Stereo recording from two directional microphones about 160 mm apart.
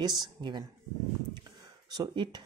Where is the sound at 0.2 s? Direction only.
25° right (ahead or behind).